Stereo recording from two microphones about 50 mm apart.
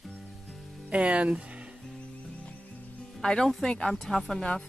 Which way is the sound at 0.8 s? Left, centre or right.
Right.